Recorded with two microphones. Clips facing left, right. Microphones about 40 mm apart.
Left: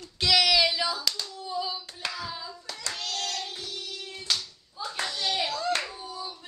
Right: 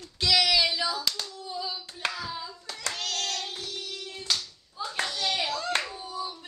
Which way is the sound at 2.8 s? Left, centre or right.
Right.